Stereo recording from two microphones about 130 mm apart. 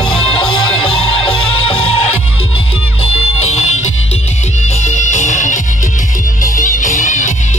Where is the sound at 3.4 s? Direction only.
60° left (ahead or behind).